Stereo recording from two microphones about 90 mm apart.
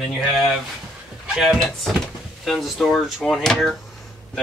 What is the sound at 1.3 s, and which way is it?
Speech, 5° right (ahead or behind).